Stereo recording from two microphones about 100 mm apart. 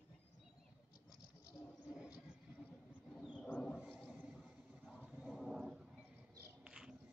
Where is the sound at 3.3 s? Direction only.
10° left (ahead or behind).